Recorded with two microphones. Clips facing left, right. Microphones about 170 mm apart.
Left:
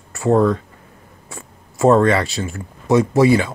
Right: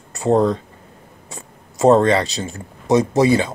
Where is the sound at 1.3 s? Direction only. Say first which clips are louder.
Left 1 dB; 20° right (ahead or behind).